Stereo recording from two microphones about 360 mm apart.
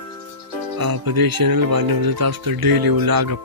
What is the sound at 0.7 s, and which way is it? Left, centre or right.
Speech, right.